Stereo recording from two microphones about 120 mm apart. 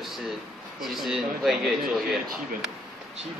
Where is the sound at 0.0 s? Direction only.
5° right (ahead or behind).